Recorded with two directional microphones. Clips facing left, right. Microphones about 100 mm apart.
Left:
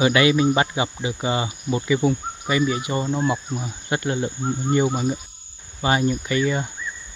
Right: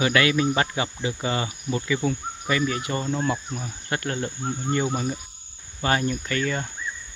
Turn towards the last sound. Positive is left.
turn(degrees=10)  # may be behind; listen again after turning